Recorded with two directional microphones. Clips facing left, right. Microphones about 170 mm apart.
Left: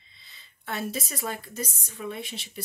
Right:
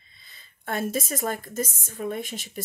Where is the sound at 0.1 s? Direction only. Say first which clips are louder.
Right 1 dB; 50° right (ahead or behind).